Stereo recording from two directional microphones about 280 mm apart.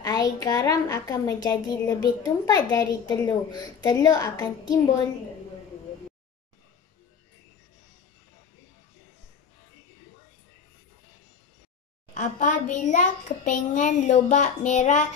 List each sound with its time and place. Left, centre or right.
0.0 s a woman's voice: centre
12.1 s a child's voice: left